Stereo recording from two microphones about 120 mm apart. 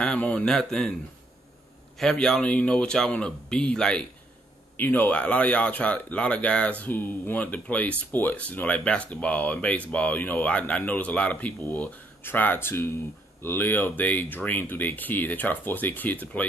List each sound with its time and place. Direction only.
0.0 s speech: 10° left (ahead or behind)
2.0 s speech: 5° left (ahead or behind)